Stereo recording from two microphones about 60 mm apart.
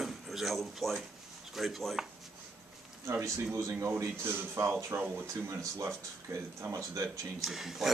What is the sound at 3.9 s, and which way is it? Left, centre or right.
A man's voice, right.